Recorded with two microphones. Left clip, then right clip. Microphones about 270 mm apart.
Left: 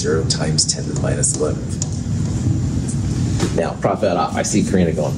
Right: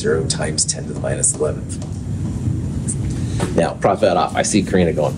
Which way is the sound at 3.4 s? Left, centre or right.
Right.